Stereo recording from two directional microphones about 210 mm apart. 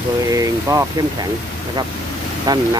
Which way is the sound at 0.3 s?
15° right (ahead or behind).